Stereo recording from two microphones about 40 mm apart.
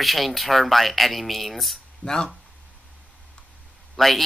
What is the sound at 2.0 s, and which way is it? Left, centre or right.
Speech, centre.